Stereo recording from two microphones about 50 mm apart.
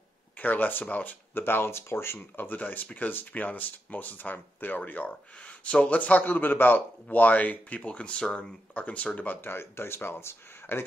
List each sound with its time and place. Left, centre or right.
0.4 s speech: left
1.3 s speech: left
6.2 s speech: left; by 8.5 s centre
8.7 s speech: left